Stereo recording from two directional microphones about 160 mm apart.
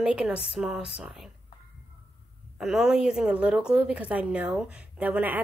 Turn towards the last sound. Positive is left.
turn(degrees=-10)  # may be behind; listen again after turning